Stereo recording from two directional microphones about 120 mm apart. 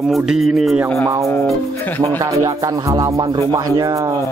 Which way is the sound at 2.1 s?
30° right (ahead or behind).